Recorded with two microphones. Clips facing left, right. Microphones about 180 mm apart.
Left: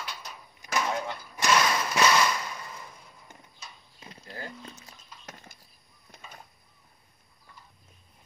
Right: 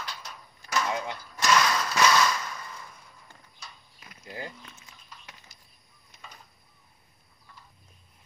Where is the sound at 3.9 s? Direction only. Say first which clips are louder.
Right 2 dB; 30° left (ahead or behind); by 5.5 s 45° left (ahead or behind).